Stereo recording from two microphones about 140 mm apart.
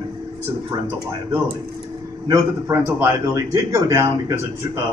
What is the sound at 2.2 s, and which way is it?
Speech, 25° right (ahead or behind).